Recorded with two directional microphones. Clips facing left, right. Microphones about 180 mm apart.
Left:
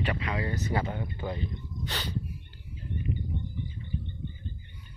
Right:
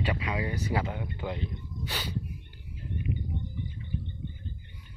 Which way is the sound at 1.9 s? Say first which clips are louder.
Even; 10° right (ahead or behind).